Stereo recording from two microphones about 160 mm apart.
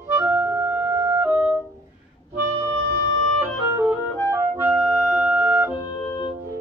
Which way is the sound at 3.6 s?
15° right (ahead or behind).